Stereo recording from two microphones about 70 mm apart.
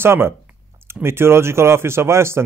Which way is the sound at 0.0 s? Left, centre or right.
Right.